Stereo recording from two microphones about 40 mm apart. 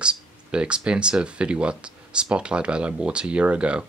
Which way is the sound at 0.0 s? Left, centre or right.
Right.